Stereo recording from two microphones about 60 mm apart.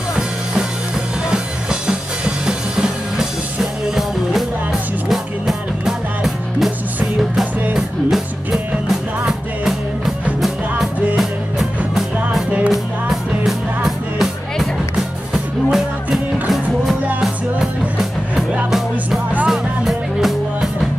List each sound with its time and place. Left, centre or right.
1.3 s music: centre
7.7 s music: centre
10.4 s music: centre
12.4 s music: right
12.7 s music: centre
15.3 s music: centre
19.4 s music: centre